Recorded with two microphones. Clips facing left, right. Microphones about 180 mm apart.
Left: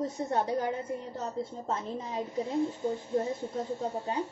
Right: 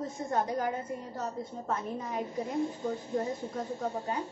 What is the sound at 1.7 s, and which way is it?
Speech, 25° left (ahead or behind).